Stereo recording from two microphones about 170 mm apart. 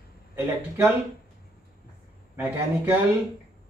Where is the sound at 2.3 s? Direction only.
10° right (ahead or behind).